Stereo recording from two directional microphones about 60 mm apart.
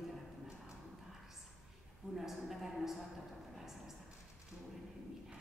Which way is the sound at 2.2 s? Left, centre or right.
Centre.